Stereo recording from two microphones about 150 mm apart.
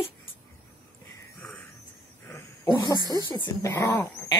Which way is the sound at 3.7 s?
15° left (ahead or behind).